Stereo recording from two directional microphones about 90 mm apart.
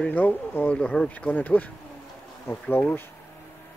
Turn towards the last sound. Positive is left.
turn(degrees=25)  # may be behind; listen again after turning